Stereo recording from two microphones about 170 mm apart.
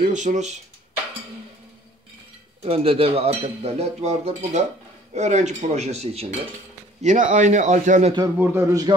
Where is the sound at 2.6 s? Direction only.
35° right (ahead or behind).